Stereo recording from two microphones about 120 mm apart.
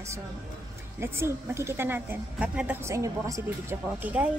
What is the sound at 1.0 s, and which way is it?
A woman's voice, 20° right (ahead or behind).